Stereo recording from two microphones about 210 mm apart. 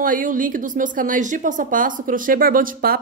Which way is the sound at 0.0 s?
40° right (ahead or behind).